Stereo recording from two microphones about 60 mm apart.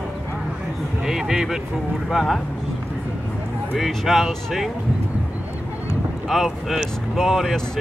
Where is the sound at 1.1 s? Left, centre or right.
Centre.